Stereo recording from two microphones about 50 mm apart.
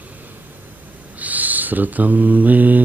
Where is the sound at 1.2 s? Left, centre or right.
Right.